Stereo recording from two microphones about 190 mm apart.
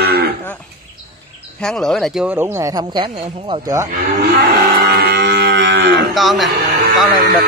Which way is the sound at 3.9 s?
60° right (ahead or behind).